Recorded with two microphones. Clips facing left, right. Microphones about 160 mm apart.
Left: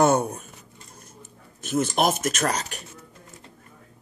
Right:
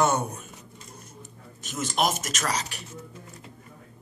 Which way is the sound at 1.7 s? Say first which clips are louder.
Left 4 dB; 55° left (ahead or behind).